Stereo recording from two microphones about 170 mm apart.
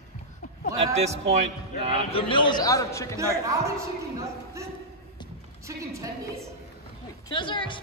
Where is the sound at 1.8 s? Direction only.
35° right (ahead or behind).